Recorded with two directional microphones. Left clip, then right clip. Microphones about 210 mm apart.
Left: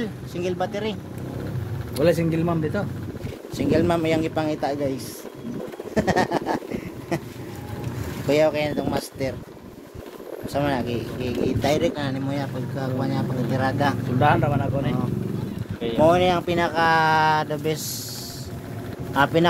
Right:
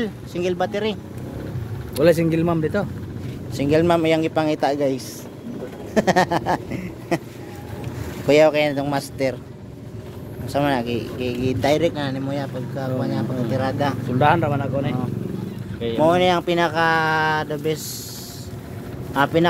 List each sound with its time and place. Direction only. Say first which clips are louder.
0.0 s speech: right 4 dB; 25° right (ahead or behind)
2.0 s speech: right 4 dB; 55° right (ahead or behind)
3.5 s speech: right 4 dB; 30° right (ahead or behind)
8.3 s speech: right 5 dB; 35° right (ahead or behind)
10.5 s speech: right 4 dB; 30° right (ahead or behind); by 13.9 s 10° right (ahead or behind)
14.2 s speech: right 2 dB; 40° right (ahead or behind)
16.0 s speech: right 1 dB; 15° right (ahead or behind)
19.1 s speech: right 1 dB; 10° right (ahead or behind)